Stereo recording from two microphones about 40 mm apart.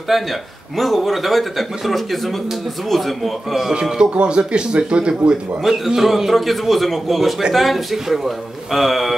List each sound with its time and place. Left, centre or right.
0.1 s speech: centre
4.0 s speech: right
5.3 s speech: centre